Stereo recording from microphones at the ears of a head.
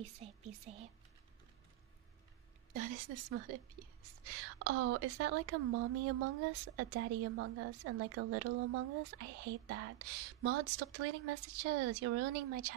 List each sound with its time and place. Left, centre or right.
0.0 s speech: right
2.7 s speech: right